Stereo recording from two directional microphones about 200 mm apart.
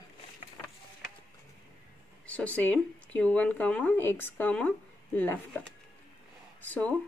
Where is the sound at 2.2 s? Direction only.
5° left (ahead or behind).